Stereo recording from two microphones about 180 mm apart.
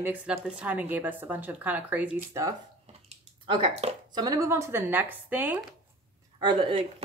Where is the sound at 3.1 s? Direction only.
25° right (ahead or behind); by 5.8 s 10° right (ahead or behind).